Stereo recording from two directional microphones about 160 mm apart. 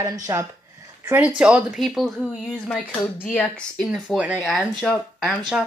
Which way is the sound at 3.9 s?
5° right (ahead or behind).